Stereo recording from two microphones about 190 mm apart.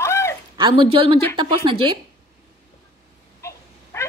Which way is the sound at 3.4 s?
15° left (ahead or behind).